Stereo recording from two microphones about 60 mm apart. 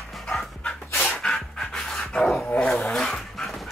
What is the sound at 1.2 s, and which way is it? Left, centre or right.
Pant, centre.